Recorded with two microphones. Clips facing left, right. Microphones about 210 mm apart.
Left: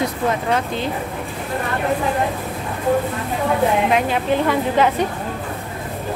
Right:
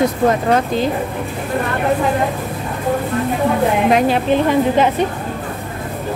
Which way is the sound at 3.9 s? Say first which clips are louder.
Right 4 dB; 35° right (ahead or behind).